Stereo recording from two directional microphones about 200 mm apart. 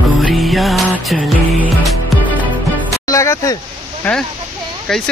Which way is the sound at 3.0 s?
15° left (ahead or behind).